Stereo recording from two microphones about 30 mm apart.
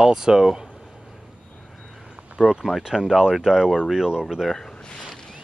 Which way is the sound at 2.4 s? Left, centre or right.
Right.